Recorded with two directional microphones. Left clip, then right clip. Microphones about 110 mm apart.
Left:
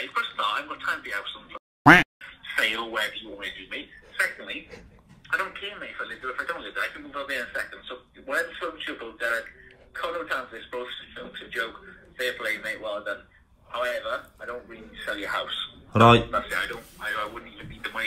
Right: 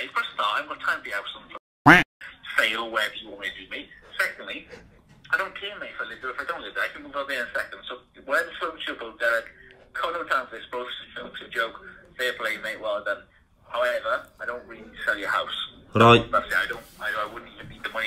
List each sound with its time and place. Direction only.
0.0 s a man's voice: 5° right (ahead or behind)
1.8 s quack: centre (ahead or behind)
2.4 s a man's voice: 10° right (ahead or behind)